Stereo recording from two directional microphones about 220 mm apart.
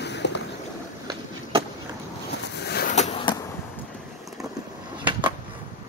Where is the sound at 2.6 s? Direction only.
45° left (ahead or behind).